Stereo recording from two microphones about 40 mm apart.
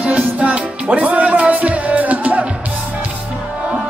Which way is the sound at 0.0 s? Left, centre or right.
Right.